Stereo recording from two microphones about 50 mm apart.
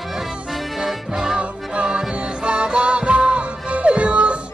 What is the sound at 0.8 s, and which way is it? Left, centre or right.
Music, centre.